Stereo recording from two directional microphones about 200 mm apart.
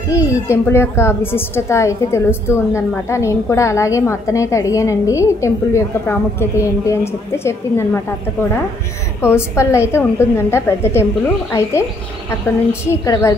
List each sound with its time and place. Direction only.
0.1 s a woman's voice: 15° left (ahead or behind)
12.8 s a woman's voice: 15° left (ahead or behind)